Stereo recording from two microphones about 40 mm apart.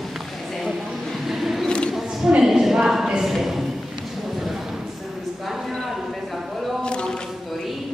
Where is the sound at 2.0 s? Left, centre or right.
Centre.